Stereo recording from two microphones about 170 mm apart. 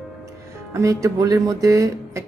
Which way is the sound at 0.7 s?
20° right (ahead or behind).